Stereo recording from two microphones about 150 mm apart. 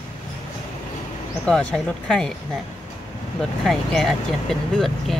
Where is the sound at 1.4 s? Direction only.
5° left (ahead or behind).